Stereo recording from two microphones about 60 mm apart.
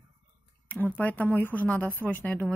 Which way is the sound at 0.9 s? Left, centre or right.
Left.